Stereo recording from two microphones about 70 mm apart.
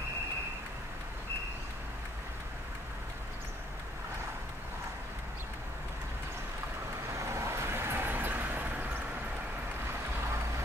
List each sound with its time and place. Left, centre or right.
7.2 s vehicle: right